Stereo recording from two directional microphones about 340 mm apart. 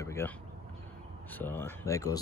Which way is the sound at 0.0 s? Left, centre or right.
Centre.